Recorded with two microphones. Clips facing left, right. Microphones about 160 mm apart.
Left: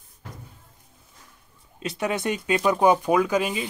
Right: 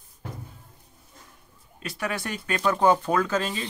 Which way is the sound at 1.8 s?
20° left (ahead or behind).